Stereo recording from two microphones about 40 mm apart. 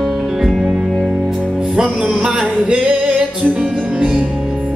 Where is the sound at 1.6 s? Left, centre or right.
Centre.